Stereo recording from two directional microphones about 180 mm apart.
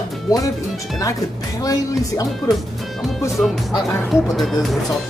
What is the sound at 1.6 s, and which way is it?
Speech, 20° left (ahead or behind).